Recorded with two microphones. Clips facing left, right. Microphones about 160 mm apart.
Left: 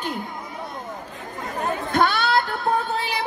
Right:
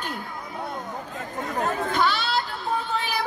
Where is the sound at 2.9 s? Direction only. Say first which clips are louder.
Left 1 dB; 30° left (ahead or behind).